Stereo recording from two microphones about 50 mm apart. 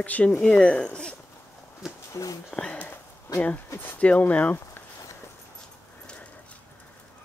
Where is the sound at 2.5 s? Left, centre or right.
Centre.